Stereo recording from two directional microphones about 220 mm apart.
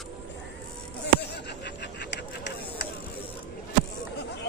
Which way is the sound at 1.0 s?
50° left (ahead or behind).